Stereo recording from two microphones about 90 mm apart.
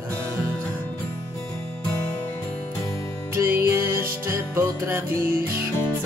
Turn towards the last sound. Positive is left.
turn(degrees=-25)  # may be behind; listen again after turning